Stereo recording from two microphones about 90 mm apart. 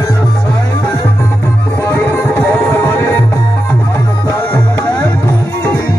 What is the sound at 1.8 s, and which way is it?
Music, 25° left (ahead or behind).